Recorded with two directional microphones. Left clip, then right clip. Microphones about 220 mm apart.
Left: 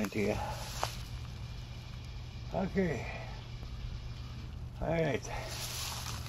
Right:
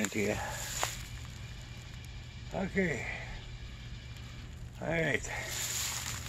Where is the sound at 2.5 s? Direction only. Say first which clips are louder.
Right 1 dB; 30° right (ahead or behind).